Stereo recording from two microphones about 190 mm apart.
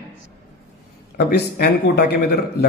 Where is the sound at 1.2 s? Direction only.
60° left (ahead or behind).